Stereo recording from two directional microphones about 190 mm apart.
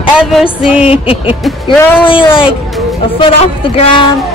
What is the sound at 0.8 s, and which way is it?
Speech, 30° left (ahead or behind).